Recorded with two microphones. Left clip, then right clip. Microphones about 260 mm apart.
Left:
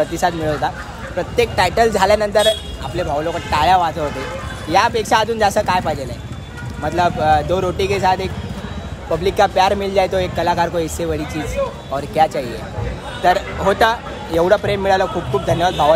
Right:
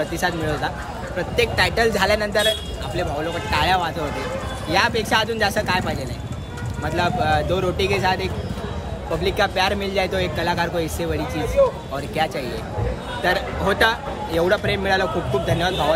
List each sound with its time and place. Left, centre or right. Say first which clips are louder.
0.1 s speech: left 5 dB; centre
11.3 s speech: right 3 dB; right
11.9 s speech: left 7 dB; centre